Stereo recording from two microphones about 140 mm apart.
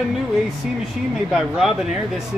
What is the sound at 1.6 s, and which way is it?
Speech, centre (ahead or behind).